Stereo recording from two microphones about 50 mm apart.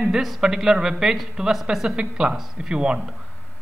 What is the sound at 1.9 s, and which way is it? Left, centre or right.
Speech, centre.